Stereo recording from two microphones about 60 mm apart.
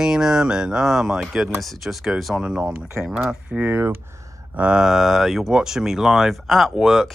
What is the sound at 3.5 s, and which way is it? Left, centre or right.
Speech, right.